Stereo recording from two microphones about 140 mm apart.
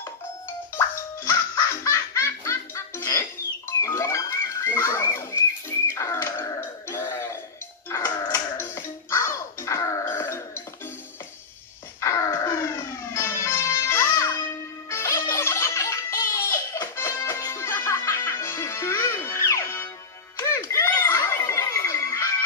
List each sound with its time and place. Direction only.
0.7 s music: 20° left (ahead or behind)
5.9 s a sound: 20° left (ahead or behind)
7.9 s music: 25° left (ahead or behind)
12.0 s music: 20° left (ahead or behind)
20.3 s telephone bell ringing: 20° left (ahead or behind)